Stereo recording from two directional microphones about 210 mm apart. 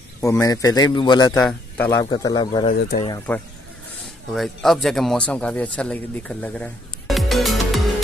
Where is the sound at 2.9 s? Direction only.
45° left (ahead or behind).